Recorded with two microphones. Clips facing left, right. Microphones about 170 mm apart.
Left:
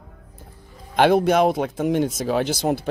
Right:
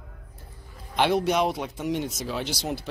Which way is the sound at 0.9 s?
50° left (ahead or behind).